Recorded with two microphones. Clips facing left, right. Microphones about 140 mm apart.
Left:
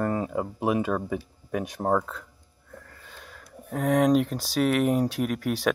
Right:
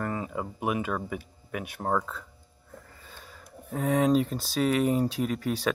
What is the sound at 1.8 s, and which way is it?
Speech, 5° left (ahead or behind).